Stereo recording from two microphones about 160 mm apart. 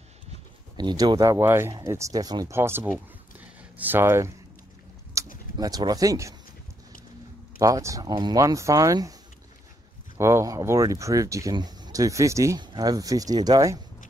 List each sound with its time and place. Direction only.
0.7 s speech: 25° right (ahead or behind)
5.2 s a sound: 20° right (ahead or behind)
5.6 s speech: 25° right (ahead or behind)
7.5 s speech: 20° right (ahead or behind)
10.1 s speech: 15° right (ahead or behind)